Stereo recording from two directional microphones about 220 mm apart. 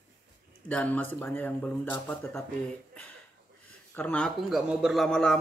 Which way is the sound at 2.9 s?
5° left (ahead or behind).